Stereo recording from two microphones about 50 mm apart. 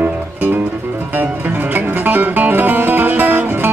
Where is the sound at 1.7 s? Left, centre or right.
Right.